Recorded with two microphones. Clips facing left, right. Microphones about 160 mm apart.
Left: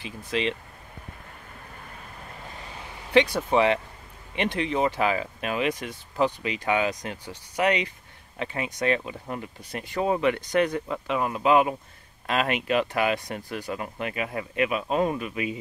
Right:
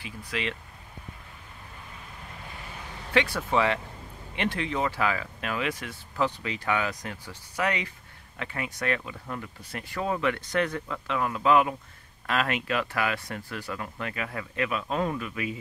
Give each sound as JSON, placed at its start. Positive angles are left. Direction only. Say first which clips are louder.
{"t": 0.0, "sound": "speech", "louder": "left 5 dB", "side_deg": 25}
{"t": 3.1, "sound": "speech", "louder": "left 5 dB", "side_deg": 20}